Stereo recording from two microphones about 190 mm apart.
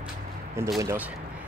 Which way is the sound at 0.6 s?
15° right (ahead or behind).